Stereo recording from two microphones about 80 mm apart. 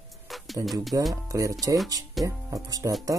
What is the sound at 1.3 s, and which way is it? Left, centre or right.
Speech, right.